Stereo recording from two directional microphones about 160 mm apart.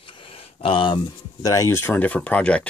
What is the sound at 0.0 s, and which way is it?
Speech, 35° left (ahead or behind).